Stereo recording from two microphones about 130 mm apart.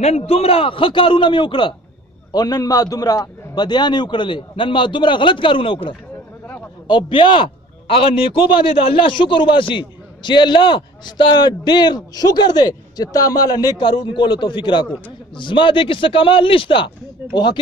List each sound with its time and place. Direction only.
0.0 s a man's voice: 55° left (ahead or behind); by 17.6 s 35° left (ahead or behind)